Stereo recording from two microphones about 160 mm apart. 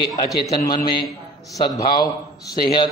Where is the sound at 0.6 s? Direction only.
25° left (ahead or behind).